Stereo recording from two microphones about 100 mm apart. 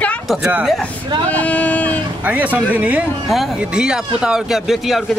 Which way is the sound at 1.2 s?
15° left (ahead or behind).